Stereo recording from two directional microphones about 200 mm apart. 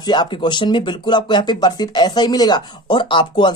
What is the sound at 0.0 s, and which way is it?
Speech, 20° left (ahead or behind).